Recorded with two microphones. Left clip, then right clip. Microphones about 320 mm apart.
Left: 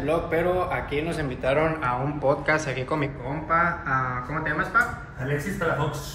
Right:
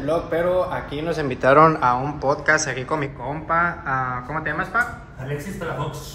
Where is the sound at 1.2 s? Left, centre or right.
Right.